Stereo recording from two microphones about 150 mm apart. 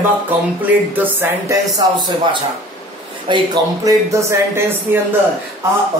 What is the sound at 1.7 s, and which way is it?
Speech, 30° right (ahead or behind).